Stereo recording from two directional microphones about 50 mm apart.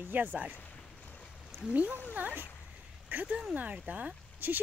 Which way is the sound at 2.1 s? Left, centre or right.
Right.